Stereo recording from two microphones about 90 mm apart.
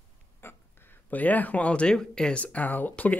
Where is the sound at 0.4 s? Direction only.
25° left (ahead or behind).